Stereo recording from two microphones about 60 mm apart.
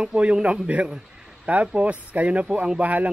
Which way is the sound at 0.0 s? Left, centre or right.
Centre.